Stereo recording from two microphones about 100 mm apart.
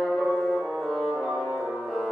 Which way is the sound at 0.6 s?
Centre (ahead or behind).